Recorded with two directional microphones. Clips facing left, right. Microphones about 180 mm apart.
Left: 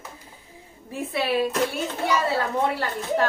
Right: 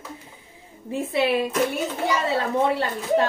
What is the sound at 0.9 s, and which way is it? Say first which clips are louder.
Speech: right 3 dB; 20° right (ahead or behind).